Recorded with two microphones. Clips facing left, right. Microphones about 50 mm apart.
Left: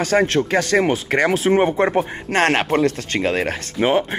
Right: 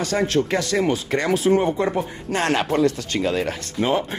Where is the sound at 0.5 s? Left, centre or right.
Left.